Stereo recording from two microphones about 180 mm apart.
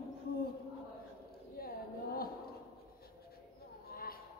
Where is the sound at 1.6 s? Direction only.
55° left (ahead or behind).